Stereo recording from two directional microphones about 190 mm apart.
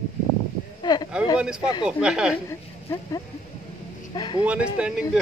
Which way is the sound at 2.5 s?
15° left (ahead or behind).